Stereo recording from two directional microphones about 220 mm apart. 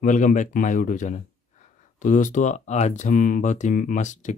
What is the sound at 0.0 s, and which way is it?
Speech, 35° left (ahead or behind).